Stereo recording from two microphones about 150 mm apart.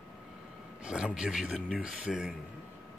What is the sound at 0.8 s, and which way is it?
Speech, 5° right (ahead or behind).